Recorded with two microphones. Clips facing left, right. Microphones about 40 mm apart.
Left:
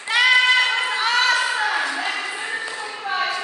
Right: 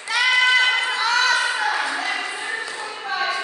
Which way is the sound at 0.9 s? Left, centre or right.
Centre.